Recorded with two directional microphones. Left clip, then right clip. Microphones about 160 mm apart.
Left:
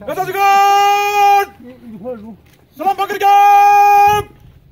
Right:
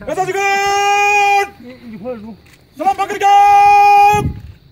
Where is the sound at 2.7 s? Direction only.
10° right (ahead or behind).